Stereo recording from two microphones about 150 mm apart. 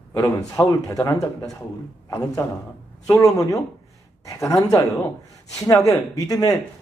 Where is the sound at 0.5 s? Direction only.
20° left (ahead or behind).